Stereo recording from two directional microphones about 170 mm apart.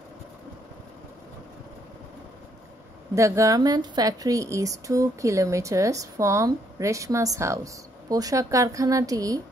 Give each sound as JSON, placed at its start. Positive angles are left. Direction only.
{"t": 3.2, "sound": "speech", "side_deg": -15}